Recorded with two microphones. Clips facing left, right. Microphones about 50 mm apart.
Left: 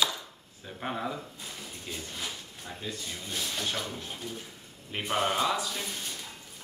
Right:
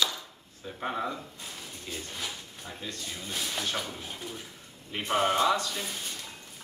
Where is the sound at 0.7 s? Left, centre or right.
Centre.